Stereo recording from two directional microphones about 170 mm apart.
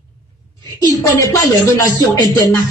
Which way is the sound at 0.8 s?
20° left (ahead or behind).